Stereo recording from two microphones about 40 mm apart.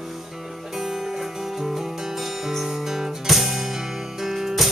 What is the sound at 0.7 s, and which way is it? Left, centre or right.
Music, centre.